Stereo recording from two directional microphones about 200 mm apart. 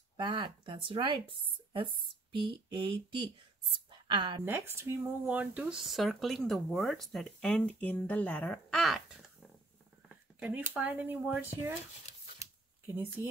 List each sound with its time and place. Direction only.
0.2 s speech: 25° right (ahead or behind)
4.5 s speech: 10° right (ahead or behind)
12.4 s a sound: 10° right (ahead or behind)